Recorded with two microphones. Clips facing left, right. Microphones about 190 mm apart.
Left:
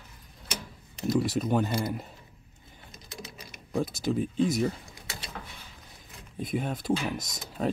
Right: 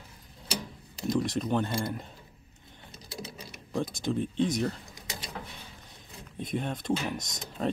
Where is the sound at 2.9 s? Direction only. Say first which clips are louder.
Right 3 dB; 35° right (ahead or behind).